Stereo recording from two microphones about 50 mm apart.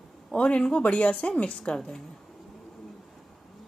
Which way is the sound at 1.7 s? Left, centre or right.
Centre.